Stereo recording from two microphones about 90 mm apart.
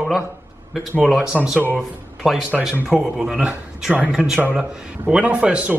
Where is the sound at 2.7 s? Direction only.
10° right (ahead or behind).